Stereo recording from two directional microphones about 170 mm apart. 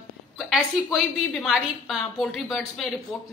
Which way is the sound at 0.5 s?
Centre (ahead or behind).